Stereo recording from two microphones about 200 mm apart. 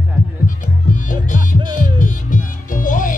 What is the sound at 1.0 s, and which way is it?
Music, 40° left (ahead or behind).